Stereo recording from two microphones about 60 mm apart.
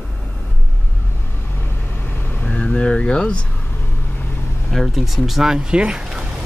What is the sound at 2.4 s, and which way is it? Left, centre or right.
Speech, left.